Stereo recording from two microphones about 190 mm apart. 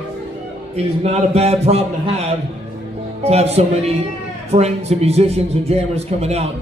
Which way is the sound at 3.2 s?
35° right (ahead or behind).